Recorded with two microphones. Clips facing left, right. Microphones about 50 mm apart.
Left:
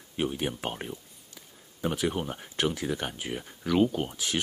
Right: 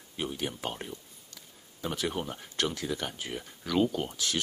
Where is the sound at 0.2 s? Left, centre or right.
Left.